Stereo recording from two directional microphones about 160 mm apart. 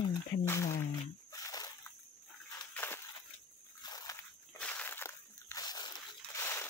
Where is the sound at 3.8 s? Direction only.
25° left (ahead or behind).